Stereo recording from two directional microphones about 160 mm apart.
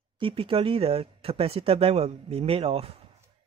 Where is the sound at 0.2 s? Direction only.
35° right (ahead or behind).